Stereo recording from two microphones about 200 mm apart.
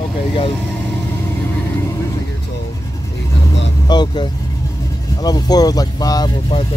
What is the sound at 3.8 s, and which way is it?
Speech, 20° left (ahead or behind).